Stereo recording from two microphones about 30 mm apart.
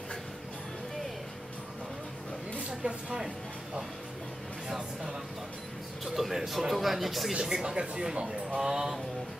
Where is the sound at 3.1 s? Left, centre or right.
Right.